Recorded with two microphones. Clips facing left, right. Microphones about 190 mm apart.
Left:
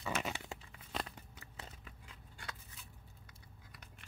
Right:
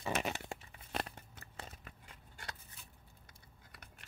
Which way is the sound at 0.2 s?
55° right (ahead or behind).